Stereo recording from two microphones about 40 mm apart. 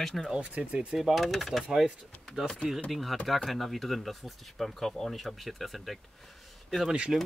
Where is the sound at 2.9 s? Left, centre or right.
Centre.